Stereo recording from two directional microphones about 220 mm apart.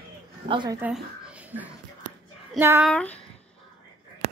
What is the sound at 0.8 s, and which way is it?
Speech, 5° right (ahead or behind).